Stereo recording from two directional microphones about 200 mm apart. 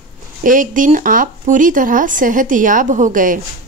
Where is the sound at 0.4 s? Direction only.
40° right (ahead or behind).